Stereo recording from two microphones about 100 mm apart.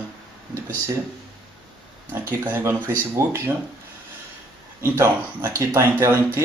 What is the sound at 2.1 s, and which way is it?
Speech, 20° right (ahead or behind).